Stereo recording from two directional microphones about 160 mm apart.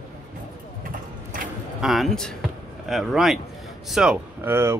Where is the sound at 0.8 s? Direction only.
60° right (ahead or behind).